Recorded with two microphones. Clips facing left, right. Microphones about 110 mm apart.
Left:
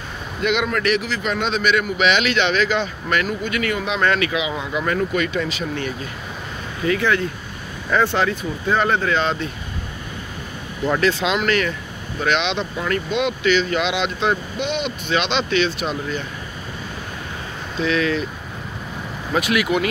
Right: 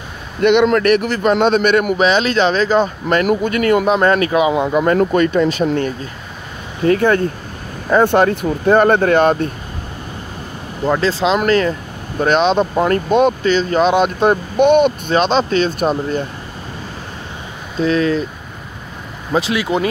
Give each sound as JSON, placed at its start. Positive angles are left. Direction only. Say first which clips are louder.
{"t": 0.4, "sound": "a man's voice", "louder": "right 9 dB", "side_deg": -60}
{"t": 0.7, "sound": "speech", "louder": "right 7 dB", "side_deg": -50}
{"t": 10.9, "sound": "speech", "louder": "right 4 dB", "side_deg": -30}
{"t": 17.7, "sound": "speech", "louder": "right 5 dB", "side_deg": -40}
{"t": 19.3, "sound": "speech", "louder": "right 3 dB", "side_deg": -25}